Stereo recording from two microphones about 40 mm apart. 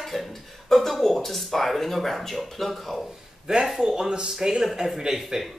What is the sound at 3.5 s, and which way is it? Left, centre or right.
Speech, centre.